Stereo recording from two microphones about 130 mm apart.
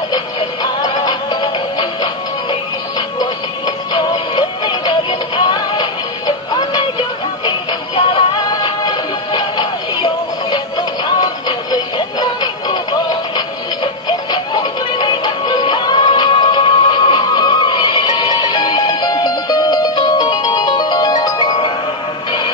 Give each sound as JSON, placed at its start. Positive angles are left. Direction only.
{"t": 0.1, "sound": "music", "side_deg": 30}
{"t": 3.2, "sound": "synthetic singing", "side_deg": 30}
{"t": 14.0, "sound": "music", "side_deg": 30}